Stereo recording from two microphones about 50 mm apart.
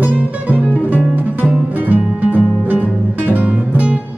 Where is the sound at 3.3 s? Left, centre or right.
Right.